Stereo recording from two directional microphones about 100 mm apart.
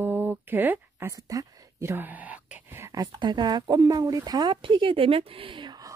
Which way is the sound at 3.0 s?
45° right (ahead or behind).